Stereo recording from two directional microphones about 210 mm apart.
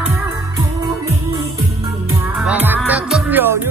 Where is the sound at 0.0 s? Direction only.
10° right (ahead or behind).